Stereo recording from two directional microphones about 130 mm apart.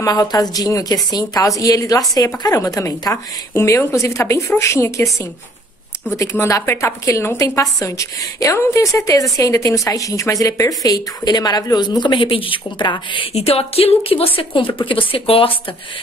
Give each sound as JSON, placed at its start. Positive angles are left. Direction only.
{"t": 0.0, "sound": "a woman's voice", "side_deg": 30}
{"t": 13.3, "sound": "a woman's voice", "side_deg": 50}